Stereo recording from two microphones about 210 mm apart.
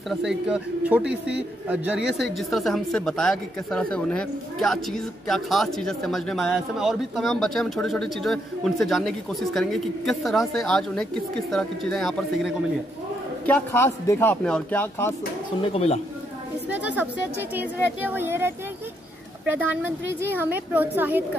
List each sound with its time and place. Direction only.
0.1 s a man's voice: centre (ahead or behind)
15.6 s speech: 30° left (ahead or behind)
16.6 s a woman's voice: 5° right (ahead or behind)